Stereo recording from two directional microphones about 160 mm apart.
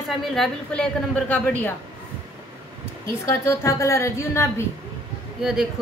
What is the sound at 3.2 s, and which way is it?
A woman's voice, 20° left (ahead or behind).